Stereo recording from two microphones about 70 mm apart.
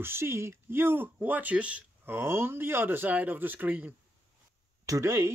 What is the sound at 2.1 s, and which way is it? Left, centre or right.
Speech, right.